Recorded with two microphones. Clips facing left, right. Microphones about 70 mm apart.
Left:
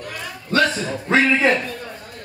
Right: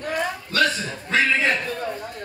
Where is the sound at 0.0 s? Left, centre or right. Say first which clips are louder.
Right 7 dB; right.